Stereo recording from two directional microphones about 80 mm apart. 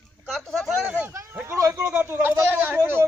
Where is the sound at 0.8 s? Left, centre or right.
Right.